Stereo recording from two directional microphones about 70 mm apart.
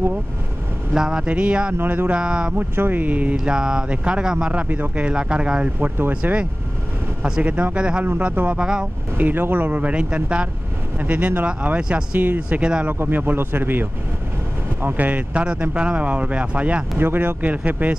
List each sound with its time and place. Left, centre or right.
0.9 s speech: centre
1.8 s speech: right
2.0 s speech: centre
2.5 s speech: right
3.3 s speech: centre
5.9 s speech: right
7.2 s speech: centre
9.2 s speech: right
13.0 s speech: right
17.0 s speech: right